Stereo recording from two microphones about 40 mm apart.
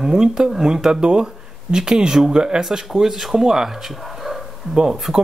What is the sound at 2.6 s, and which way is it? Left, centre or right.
Speech, centre.